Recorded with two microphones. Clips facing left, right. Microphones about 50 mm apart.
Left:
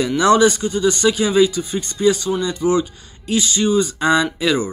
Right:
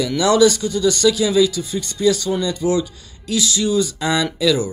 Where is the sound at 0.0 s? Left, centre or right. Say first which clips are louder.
Left 1 dB; left.